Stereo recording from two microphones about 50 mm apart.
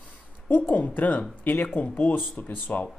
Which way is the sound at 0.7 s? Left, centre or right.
Left.